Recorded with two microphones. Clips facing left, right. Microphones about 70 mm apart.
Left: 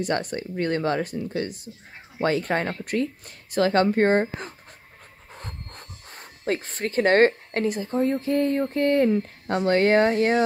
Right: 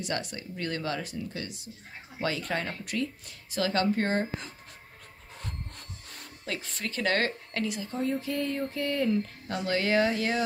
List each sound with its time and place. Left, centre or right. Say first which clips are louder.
0.0 s speech: left 8 dB; left